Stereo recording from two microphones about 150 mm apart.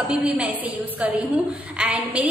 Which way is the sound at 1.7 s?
5° right (ahead or behind).